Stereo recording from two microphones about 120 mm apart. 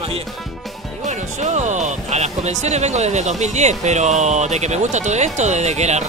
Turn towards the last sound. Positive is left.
turn(degrees=-70)  # may be behind; listen again after turning